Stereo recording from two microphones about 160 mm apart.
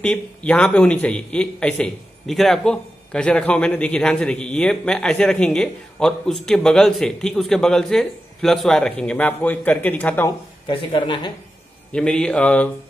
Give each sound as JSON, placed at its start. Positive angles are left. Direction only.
{"t": 0.0, "sound": "a man's voice", "side_deg": 5}
{"t": 10.7, "sound": "speech", "side_deg": 30}
{"t": 11.9, "sound": "speech", "side_deg": 5}